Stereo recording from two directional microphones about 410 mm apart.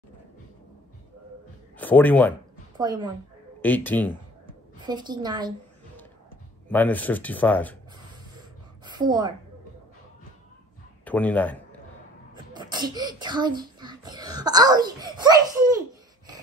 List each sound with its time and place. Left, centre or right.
1.8 s speech: centre
2.8 s a woman's voice: centre
3.6 s speech: centre
4.7 s a woman's voice: centre
6.7 s speech: centre
8.8 s a woman's voice: centre
11.1 s speech: centre
12.5 s speech: centre